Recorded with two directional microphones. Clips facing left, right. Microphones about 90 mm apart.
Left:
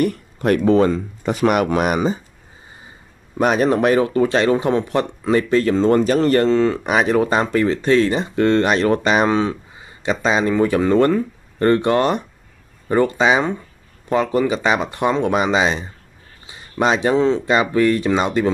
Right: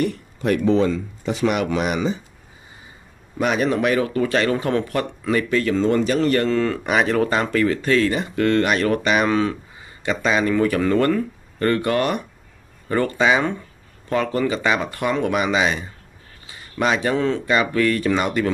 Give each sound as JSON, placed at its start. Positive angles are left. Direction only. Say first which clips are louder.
{"t": 0.0, "sound": "speech", "louder": "left 3 dB", "side_deg": 50}
{"t": 3.3, "sound": "speech", "louder": "left 4 dB", "side_deg": 40}